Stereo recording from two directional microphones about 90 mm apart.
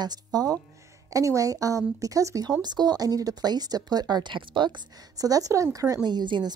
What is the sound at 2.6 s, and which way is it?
A woman's voice, 50° right (ahead or behind).